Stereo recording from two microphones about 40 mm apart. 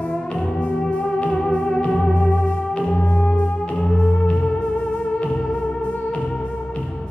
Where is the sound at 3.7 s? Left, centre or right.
Centre.